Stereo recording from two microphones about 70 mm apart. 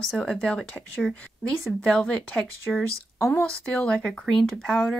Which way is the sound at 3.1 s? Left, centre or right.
Left.